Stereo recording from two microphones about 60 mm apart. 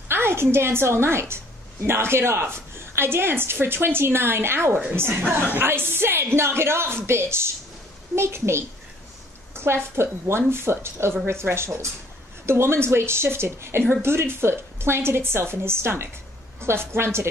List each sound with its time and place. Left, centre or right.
0.1 s a woman's voice: right